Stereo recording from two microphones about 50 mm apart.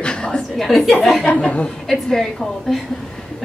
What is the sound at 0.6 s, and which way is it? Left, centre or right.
Speech, centre.